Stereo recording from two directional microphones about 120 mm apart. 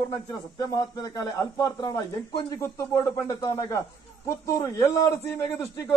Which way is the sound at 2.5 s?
20° left (ahead or behind).